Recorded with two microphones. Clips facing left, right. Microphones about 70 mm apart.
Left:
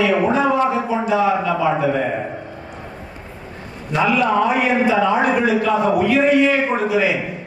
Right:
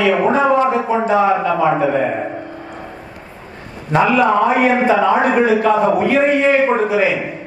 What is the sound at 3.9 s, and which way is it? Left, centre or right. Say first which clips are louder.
A man's voice: right 4 dB; right.